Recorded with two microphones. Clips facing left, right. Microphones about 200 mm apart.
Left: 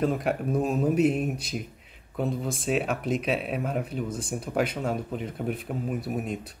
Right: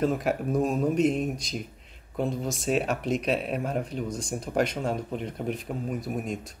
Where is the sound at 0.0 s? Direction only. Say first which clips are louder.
Even; centre (ahead or behind).